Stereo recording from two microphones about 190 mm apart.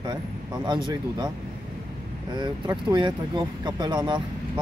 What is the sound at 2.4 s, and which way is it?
Speech, 20° right (ahead or behind).